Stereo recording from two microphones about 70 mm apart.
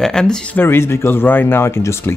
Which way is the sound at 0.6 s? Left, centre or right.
Left.